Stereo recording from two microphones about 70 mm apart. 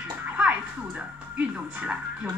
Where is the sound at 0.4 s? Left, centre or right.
Centre.